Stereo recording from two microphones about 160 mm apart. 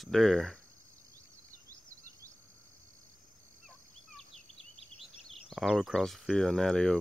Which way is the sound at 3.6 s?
Centre (ahead or behind).